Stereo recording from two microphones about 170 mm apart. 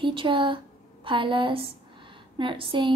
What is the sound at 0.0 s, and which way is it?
Speech, 30° right (ahead or behind).